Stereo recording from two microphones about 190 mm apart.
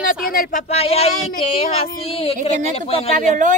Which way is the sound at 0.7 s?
30° left (ahead or behind).